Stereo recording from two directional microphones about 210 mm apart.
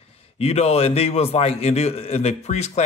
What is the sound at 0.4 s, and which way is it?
A man's voice, 30° left (ahead or behind).